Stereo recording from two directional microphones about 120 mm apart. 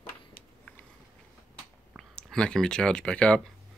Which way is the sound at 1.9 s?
5° left (ahead or behind).